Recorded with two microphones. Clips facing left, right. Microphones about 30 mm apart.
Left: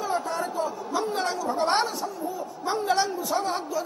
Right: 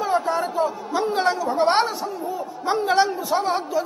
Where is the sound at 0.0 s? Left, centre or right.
Right.